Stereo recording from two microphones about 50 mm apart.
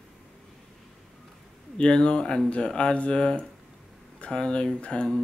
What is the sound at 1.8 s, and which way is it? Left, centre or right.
Speech, left.